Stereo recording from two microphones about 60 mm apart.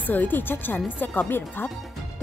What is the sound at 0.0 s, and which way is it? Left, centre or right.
A woman's voice, left.